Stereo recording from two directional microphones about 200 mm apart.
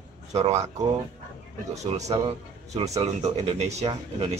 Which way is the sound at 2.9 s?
15° right (ahead or behind).